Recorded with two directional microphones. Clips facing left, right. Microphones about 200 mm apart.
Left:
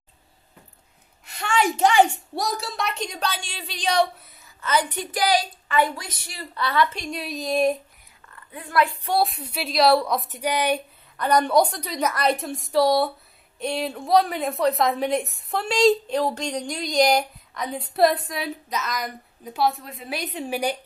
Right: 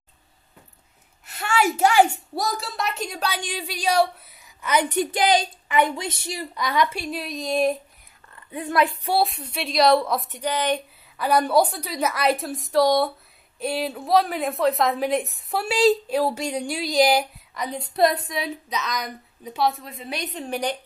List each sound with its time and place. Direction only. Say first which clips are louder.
1.2 s a woman's voice: even; 5° right (ahead or behind); by 6.3 s 25° right (ahead or behind)
6.3 s a woman's voice: left 1 dB; 15° right (ahead or behind)
8.5 s a woman's voice: right 1 dB; 20° right (ahead or behind)
9.1 s a woman's voice: even; centre (ahead or behind)
11.1 s a woman's voice: even; 5° right (ahead or behind)